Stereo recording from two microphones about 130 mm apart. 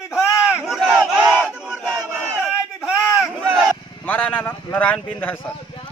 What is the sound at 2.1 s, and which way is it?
Battle cry, 15° right (ahead or behind).